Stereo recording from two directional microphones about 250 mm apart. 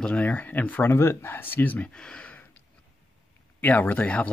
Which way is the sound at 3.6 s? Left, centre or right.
Centre.